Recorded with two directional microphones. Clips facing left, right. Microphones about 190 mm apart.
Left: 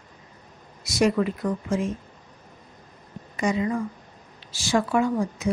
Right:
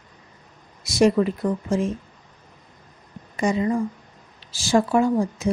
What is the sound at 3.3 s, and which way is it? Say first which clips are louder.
A woman's voice: right 3 dB; 35° right (ahead or behind).